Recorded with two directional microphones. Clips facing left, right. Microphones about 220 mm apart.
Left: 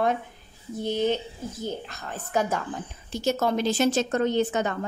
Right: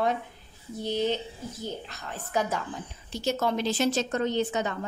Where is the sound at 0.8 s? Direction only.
50° left (ahead or behind).